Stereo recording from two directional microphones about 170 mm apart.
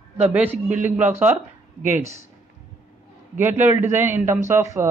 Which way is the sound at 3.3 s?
10° right (ahead or behind).